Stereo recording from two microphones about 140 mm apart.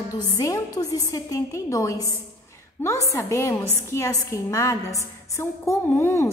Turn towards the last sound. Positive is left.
turn(degrees=15)  # may be behind; listen again after turning